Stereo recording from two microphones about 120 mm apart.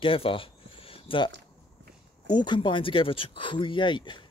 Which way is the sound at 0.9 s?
45° left (ahead or behind).